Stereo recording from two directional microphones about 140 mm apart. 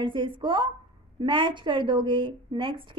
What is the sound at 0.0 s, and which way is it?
A woman's voice, 35° right (ahead or behind).